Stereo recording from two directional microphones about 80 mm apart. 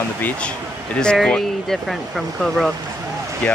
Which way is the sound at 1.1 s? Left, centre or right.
Centre.